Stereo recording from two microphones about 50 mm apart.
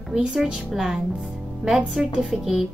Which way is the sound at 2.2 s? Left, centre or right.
Centre.